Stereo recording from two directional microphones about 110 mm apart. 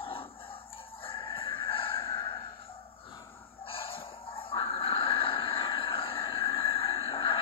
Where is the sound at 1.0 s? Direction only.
55° left (ahead or behind).